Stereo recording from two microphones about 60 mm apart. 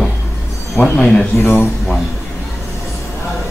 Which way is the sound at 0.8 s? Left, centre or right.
Left.